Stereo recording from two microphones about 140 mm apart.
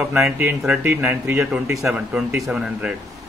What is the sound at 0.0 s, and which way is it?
A man's voice, 10° right (ahead or behind).